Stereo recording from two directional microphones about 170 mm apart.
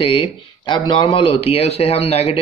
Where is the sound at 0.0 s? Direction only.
30° left (ahead or behind).